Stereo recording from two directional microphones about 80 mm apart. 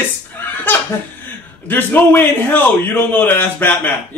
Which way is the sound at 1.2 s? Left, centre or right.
Left.